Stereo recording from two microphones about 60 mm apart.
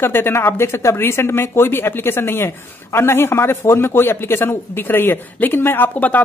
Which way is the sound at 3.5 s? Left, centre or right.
Left.